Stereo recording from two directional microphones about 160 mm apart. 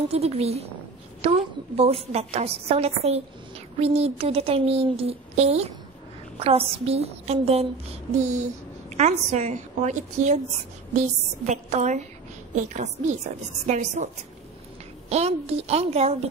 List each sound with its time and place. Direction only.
0.1 s a woman's voice: 40° right (ahead or behind)
11.4 s a woman's voice: 45° right (ahead or behind)